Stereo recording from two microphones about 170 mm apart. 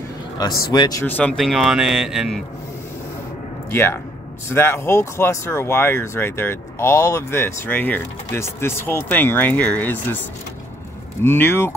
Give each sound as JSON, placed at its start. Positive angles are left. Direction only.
{"t": 0.4, "sound": "a man's voice", "side_deg": 25}
{"t": 1.0, "sound": "speech", "side_deg": 10}
{"t": 3.7, "sound": "speech", "side_deg": 15}
{"t": 11.2, "sound": "speech", "side_deg": 15}